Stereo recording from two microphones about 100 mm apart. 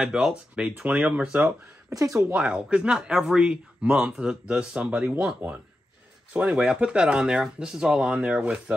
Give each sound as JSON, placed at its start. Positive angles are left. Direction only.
{"t": 0.0, "sound": "speech", "side_deg": -5}
{"t": 1.9, "sound": "speech", "side_deg": -30}
{"t": 2.3, "sound": "speech", "side_deg": -10}
{"t": 5.4, "sound": "speech", "side_deg": -25}
{"t": 6.3, "sound": "speech", "side_deg": -10}